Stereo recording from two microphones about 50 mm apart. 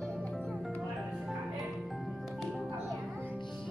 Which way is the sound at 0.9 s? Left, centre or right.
Centre.